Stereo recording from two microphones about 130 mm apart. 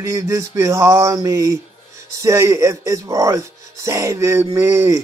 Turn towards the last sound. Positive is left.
turn(degrees=-20)  # may be behind; listen again after turning